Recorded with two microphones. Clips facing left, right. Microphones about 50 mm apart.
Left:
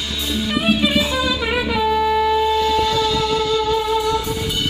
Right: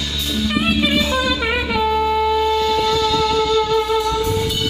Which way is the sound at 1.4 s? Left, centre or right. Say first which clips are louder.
Even; centre.